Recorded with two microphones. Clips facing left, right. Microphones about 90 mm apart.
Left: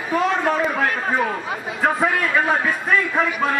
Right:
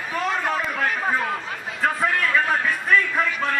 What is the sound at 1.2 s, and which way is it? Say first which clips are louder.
A man's voice: left 4 dB; 5° left (ahead or behind).